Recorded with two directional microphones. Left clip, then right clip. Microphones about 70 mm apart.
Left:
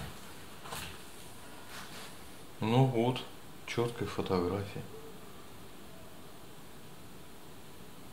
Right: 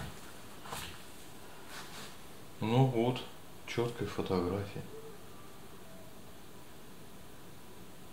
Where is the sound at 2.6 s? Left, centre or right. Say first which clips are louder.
Left 1 dB; left.